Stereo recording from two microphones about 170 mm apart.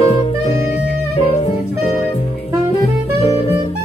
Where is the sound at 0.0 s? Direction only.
40° left (ahead or behind).